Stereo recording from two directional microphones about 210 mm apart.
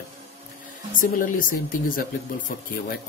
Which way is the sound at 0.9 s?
40° left (ahead or behind).